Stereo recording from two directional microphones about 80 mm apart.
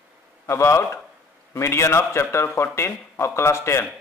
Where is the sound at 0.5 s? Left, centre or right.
Left.